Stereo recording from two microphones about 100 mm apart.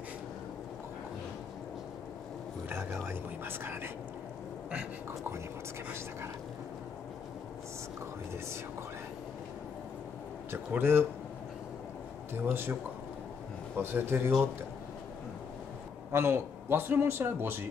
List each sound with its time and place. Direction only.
2.7 s a man's voice: 25° right (ahead or behind)
10.5 s a man's voice: 25° right (ahead or behind)
12.4 s a man's voice: 20° right (ahead or behind)
13.7 s a man's voice: 20° right (ahead or behind)
16.1 s a man's voice: 25° right (ahead or behind)